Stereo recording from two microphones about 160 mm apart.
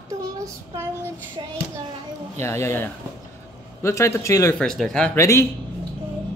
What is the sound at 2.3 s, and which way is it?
A man's voice, 15° left (ahead or behind).